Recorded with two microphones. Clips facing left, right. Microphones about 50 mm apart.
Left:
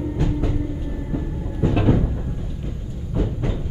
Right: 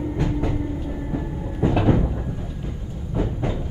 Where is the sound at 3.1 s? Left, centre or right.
Centre.